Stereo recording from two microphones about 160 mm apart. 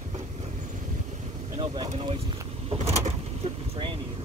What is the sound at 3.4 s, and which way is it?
Vehicle, 35° right (ahead or behind).